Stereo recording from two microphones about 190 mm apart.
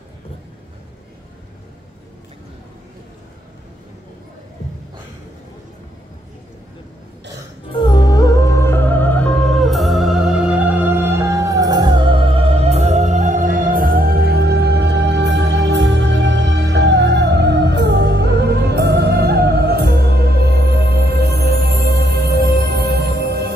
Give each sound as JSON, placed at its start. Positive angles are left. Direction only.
{"t": 7.7, "sound": "music", "side_deg": 25}